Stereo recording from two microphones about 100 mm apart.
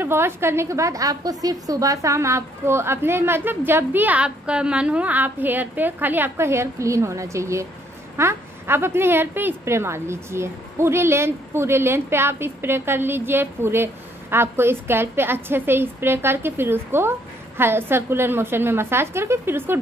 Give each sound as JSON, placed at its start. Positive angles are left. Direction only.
{"t": 0.0, "sound": "a woman's voice", "side_deg": -25}